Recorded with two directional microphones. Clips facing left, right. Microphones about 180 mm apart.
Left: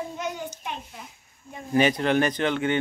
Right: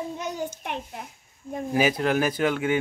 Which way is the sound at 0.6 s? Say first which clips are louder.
Right 3 dB; 60° right (ahead or behind).